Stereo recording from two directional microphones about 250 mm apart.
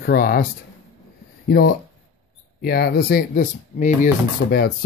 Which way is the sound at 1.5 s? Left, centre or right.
Left.